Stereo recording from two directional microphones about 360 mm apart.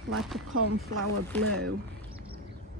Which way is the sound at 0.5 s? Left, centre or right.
Right.